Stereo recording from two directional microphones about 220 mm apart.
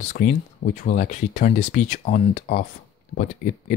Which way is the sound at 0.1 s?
35° left (ahead or behind).